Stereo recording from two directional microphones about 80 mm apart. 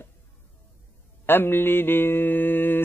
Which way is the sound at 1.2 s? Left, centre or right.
Left.